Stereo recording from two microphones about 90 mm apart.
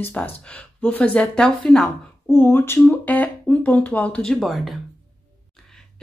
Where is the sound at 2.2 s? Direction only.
25° left (ahead or behind); by 4.7 s centre (ahead or behind).